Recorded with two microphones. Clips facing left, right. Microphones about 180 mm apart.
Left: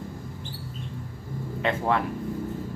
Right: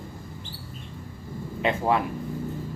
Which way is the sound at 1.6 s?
15° right (ahead or behind).